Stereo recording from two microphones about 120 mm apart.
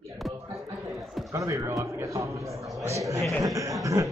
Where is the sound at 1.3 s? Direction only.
25° right (ahead or behind).